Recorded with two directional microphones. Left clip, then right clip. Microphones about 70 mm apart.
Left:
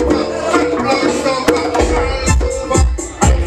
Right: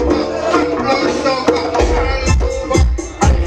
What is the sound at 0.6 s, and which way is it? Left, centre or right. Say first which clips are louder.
Music: left 2 dB; centre.